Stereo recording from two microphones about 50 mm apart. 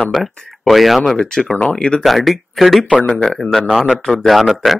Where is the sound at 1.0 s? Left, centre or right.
Centre.